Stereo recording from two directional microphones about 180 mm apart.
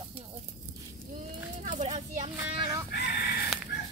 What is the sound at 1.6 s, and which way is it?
Speech, 40° right (ahead or behind).